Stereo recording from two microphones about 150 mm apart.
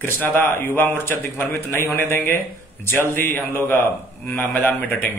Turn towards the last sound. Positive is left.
turn(degrees=10)  # may be behind; listen again after turning